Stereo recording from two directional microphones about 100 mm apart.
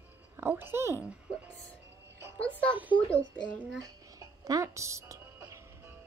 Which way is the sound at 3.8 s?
35° right (ahead or behind).